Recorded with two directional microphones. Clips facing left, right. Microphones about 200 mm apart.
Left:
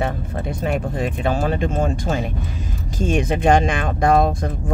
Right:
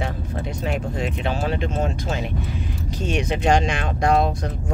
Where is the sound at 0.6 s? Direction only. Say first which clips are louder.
Left 4 dB; 50° left (ahead or behind).